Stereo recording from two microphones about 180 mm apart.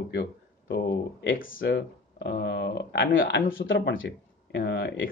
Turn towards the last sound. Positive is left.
turn(degrees=65)  # may be behind; listen again after turning